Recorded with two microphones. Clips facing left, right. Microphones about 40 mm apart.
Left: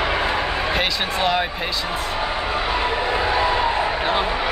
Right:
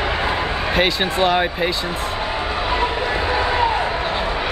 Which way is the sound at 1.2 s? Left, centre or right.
Centre.